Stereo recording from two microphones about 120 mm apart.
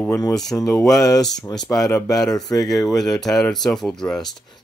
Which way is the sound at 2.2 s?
30° left (ahead or behind).